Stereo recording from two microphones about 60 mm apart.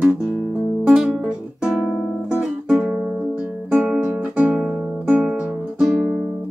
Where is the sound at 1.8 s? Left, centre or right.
Centre.